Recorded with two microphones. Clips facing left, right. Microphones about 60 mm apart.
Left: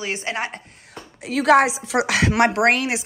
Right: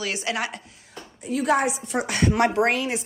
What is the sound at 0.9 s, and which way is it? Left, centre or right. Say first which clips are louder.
Speech: left 2 dB; left.